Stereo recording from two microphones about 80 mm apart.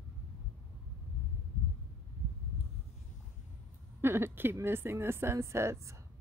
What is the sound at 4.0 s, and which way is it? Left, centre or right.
Speech, right.